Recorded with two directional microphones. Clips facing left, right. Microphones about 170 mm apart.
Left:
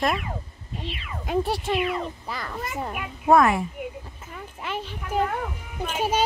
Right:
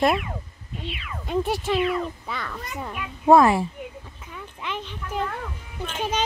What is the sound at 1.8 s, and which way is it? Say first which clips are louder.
Speech: right 2 dB; centre (ahead or behind).